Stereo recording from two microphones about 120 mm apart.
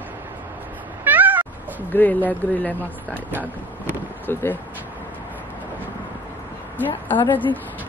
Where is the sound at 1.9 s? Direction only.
15° left (ahead or behind).